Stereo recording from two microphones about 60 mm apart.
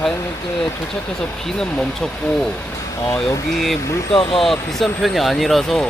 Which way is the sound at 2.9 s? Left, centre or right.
Left.